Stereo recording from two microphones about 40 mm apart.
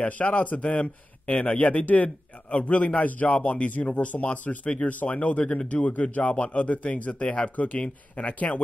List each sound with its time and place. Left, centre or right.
0.0 s a man's voice: left